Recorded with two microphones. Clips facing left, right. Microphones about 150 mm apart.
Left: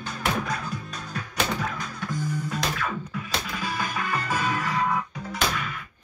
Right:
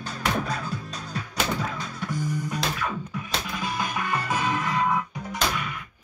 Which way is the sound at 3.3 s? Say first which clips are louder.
Right 1 dB; 20° right (ahead or behind).